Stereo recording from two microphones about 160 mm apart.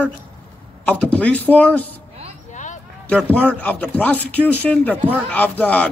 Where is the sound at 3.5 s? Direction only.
10° left (ahead or behind).